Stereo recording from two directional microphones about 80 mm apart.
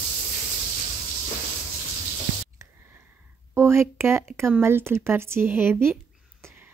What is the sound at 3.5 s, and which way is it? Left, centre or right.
Speech, right.